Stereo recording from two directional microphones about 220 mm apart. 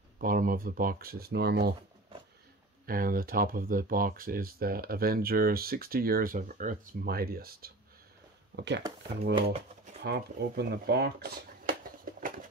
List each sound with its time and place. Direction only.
0.2 s speech: 40° right (ahead or behind)
2.9 s speech: 40° right (ahead or behind)
9.2 s speech: 25° right (ahead or behind)
10.0 s speech: 45° right (ahead or behind)